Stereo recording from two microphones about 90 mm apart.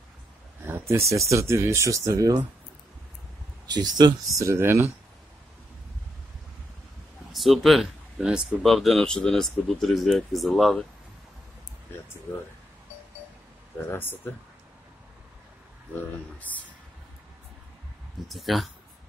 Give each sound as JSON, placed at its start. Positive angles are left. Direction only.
{"t": 0.7, "sound": "speech", "side_deg": -30}
{"t": 3.6, "sound": "speech", "side_deg": -50}
{"t": 4.3, "sound": "speech", "side_deg": -35}
{"t": 7.3, "sound": "speech", "side_deg": 0}
{"t": 13.8, "sound": "speech", "side_deg": 20}
{"t": 16.5, "sound": "speech", "side_deg": 15}
{"t": 18.3, "sound": "speech", "side_deg": 0}